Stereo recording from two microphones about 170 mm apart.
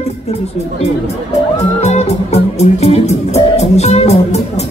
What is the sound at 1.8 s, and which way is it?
Music, 40° left (ahead or behind).